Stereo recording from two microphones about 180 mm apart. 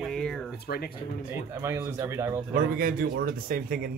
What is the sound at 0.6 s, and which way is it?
Speech, 60° left (ahead or behind).